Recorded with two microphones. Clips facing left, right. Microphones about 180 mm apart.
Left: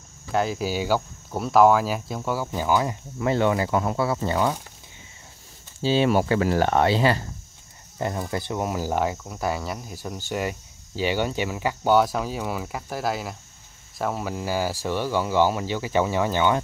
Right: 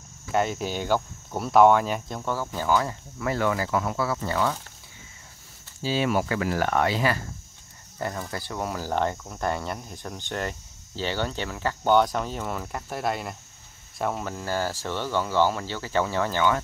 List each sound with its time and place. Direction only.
0.3 s speech: centre (ahead or behind); by 4.6 s 20° left (ahead or behind)
5.8 s speech: 25° left (ahead or behind)